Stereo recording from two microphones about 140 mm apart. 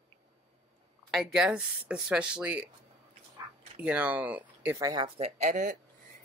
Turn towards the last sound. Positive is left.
turn(degrees=-60)  # may be behind; listen again after turning